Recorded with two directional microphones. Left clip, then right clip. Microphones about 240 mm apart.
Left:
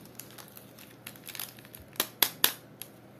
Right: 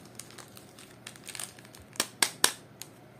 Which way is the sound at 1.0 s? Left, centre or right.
Centre.